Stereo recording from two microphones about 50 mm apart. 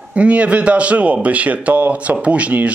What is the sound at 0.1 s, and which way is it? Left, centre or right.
Speech, right.